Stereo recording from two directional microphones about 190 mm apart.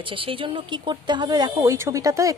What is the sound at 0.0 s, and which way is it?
Speech, 30° right (ahead or behind).